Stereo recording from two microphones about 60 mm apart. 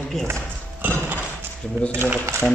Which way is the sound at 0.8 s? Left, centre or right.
Right.